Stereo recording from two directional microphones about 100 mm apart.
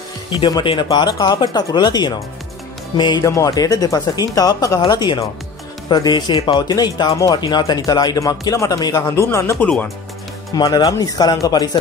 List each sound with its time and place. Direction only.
0.8 s speech: 45° left (ahead or behind)
3.3 s speech: 35° left (ahead or behind); by 6.6 s 55° left (ahead or behind)
6.7 s speech: 40° left (ahead or behind)
10.5 s speech: 40° left (ahead or behind)